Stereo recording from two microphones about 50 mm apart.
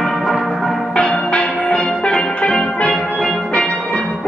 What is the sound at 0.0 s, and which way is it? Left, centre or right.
Music, centre.